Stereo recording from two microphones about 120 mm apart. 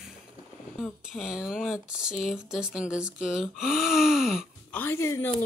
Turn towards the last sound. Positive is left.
turn(degrees=25)  # may be behind; listen again after turning